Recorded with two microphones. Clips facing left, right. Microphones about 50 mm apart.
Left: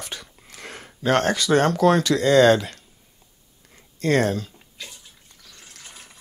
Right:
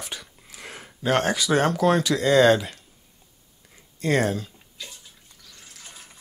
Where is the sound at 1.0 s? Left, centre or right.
Centre.